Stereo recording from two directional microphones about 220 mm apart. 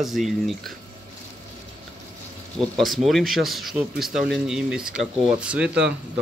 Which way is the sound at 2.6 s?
Centre (ahead or behind).